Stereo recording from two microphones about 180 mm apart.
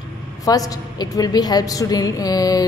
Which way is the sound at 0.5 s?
20° left (ahead or behind).